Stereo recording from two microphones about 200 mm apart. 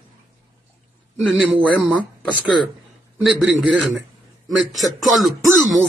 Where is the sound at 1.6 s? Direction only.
5° left (ahead or behind).